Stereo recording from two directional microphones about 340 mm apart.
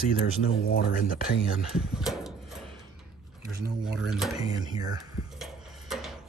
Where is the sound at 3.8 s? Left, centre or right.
Centre.